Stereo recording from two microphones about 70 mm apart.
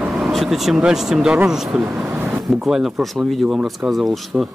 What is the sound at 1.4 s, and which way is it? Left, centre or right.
Speech, centre.